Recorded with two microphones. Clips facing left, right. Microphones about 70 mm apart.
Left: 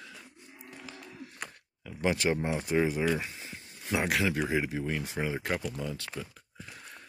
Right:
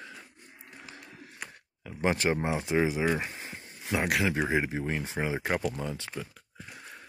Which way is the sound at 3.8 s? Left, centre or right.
Centre.